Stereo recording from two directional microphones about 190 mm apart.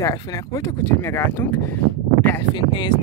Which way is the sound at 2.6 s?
25° left (ahead or behind).